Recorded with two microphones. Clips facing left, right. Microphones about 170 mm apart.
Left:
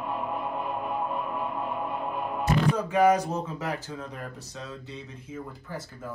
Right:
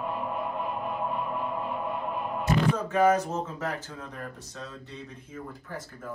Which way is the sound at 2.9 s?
10° left (ahead or behind).